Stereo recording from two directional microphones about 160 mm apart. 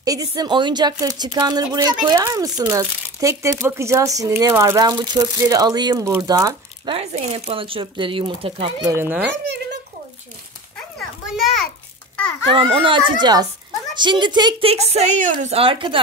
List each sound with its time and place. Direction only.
0.0 s speech: 20° right (ahead or behind)
7.0 s speech: 40° right (ahead or behind)
8.8 s a child's voice: 15° right (ahead or behind)
11.0 s children playing: centre (ahead or behind)
12.5 s speech: 30° right (ahead or behind)
14.7 s speech: 40° right (ahead or behind)